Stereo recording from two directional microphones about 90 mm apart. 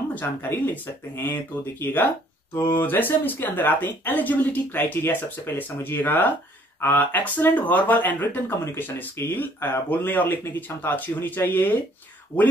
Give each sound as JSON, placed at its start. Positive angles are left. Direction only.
{"t": 0.1, "sound": "speech", "side_deg": 20}